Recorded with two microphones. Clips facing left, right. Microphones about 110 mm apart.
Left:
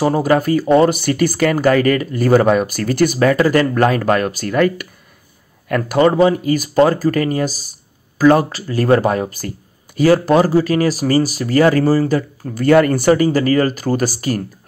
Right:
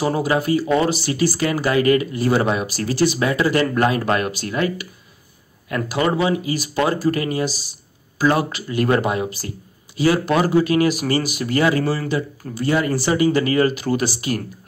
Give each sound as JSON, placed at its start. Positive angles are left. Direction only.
{"t": 0.0, "sound": "speech", "side_deg": 45}
{"t": 6.0, "sound": "speech", "side_deg": 40}